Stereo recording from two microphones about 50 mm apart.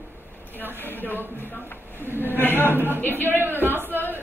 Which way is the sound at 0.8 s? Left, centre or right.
Left.